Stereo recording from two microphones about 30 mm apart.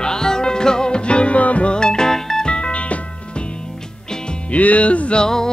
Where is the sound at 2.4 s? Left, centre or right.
Left.